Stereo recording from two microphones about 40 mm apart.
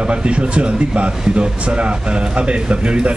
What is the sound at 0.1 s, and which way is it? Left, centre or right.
Speech, right.